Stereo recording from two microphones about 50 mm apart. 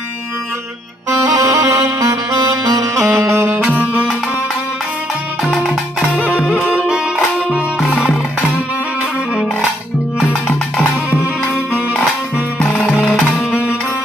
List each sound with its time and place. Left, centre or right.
1.4 s music: right
3.2 s music: right
3.7 s music: right